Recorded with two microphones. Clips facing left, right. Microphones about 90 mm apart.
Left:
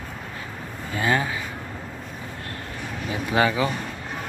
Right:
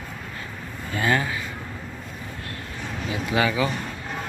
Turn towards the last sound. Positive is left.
turn(degrees=30)  # may be behind; listen again after turning